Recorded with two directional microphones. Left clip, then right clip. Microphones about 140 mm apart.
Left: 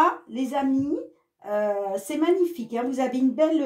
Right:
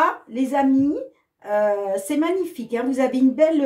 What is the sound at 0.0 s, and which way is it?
A woman's voice, 40° left (ahead or behind).